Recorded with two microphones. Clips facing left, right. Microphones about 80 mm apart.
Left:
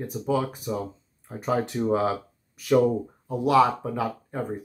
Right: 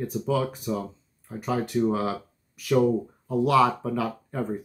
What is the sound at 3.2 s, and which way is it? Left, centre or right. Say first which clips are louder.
Speech: left 1 dB; centre.